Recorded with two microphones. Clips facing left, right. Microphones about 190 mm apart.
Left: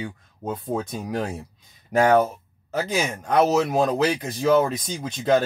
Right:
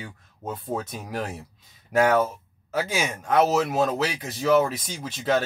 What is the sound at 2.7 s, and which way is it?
Speech, 5° right (ahead or behind).